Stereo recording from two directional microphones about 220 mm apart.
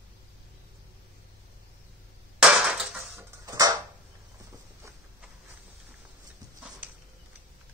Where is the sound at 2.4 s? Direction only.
5° right (ahead or behind).